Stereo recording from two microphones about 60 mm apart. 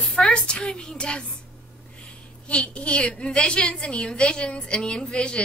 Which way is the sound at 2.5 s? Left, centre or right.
Centre.